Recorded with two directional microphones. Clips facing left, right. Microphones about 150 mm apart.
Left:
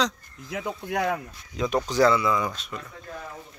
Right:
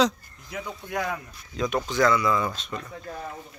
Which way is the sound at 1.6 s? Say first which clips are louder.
Even; 20° left (ahead or behind).